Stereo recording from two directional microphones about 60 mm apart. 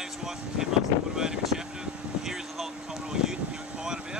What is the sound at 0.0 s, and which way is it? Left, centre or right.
Vehicle, centre.